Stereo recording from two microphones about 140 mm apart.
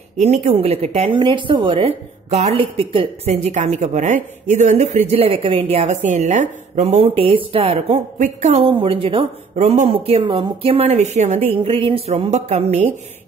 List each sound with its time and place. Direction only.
0.2 s a woman's voice: 55° right (ahead or behind)
1.2 s a woman's voice: 35° right (ahead or behind); by 11.4 s 50° right (ahead or behind)
11.6 s a woman's voice: 40° right (ahead or behind)